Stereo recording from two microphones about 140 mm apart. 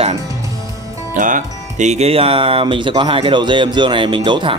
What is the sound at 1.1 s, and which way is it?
Speech, 65° right (ahead or behind).